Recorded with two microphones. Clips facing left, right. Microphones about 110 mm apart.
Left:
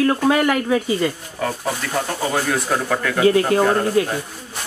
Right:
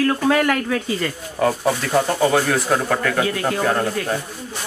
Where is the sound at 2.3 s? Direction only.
Centre (ahead or behind).